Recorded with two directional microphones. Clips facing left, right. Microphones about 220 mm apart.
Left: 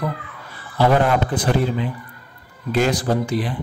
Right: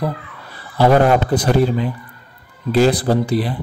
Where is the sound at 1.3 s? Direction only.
40° right (ahead or behind).